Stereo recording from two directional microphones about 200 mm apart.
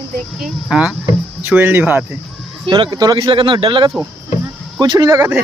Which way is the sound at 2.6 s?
25° right (ahead or behind).